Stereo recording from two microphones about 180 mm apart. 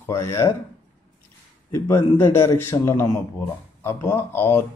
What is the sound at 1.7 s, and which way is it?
Speech, 15° left (ahead or behind).